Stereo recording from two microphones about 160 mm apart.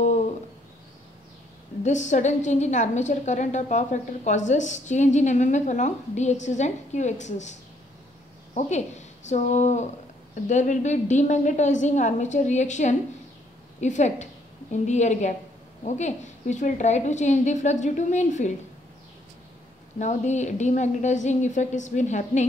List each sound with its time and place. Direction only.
1.8 s a woman's voice: 50° left (ahead or behind)
8.5 s a woman's voice: 45° left (ahead or behind)
20.0 s a woman's voice: 45° left (ahead or behind)